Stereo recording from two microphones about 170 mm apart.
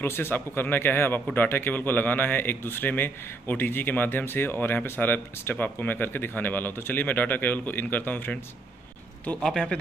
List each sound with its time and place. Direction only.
0.0 s a man's voice: 15° left (ahead or behind)